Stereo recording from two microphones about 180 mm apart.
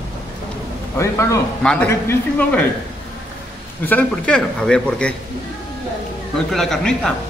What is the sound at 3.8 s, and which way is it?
A man's voice, 5° left (ahead or behind).